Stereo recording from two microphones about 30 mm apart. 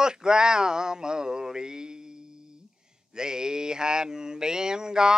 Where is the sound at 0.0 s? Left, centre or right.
Right.